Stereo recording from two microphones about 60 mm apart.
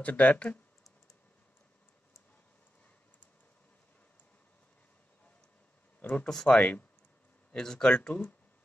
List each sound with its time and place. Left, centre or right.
0.0 s speech: left
5.9 s a sound: left
6.2 s speech: centre